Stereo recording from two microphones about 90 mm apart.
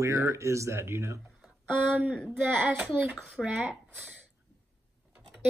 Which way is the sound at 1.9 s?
15° right (ahead or behind).